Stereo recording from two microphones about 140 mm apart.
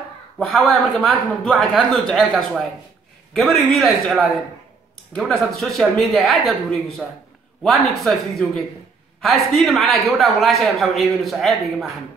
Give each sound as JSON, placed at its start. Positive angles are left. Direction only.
{"t": 0.4, "sound": "a man's voice", "side_deg": 5}
{"t": 7.0, "sound": "a man's voice", "side_deg": -10}
{"t": 7.6, "sound": "a man's voice", "side_deg": 0}